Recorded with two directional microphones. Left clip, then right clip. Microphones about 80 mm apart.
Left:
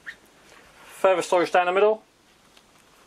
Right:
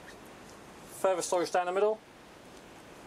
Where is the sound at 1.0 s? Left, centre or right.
Centre.